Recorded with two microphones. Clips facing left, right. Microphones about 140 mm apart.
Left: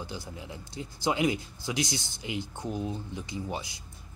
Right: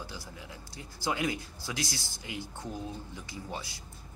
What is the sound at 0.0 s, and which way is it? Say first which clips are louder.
Speech: left 4 dB; 20° left (ahead or behind).